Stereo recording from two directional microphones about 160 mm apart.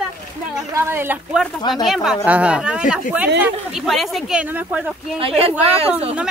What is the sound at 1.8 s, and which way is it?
Speech, centre (ahead or behind).